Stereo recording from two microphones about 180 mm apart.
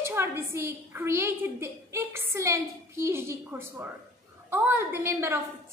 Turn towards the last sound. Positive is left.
turn(degrees=-15)  # may be behind; listen again after turning